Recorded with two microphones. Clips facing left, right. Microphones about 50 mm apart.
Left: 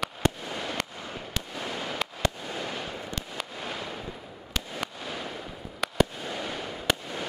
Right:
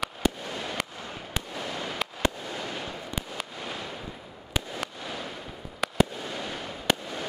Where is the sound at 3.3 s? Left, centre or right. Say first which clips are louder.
Even; centre.